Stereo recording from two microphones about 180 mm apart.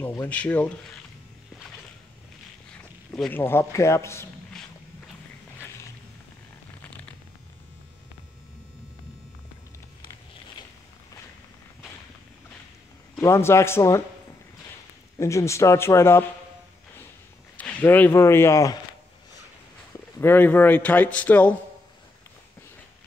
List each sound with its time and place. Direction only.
0.0 s a man's voice: 10° left (ahead or behind)
3.2 s a man's voice: 10° left (ahead or behind)
4.5 s walk: 5° left (ahead or behind)
13.2 s a man's voice: 15° left (ahead or behind)
15.1 s a man's voice: 15° left (ahead or behind)
17.6 s speech: 10° left (ahead or behind)
20.2 s a man's voice: 10° left (ahead or behind)